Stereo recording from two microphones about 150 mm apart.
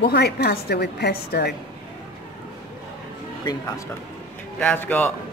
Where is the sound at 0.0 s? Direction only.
90° left.